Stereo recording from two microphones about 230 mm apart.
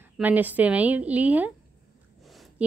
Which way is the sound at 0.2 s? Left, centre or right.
Centre.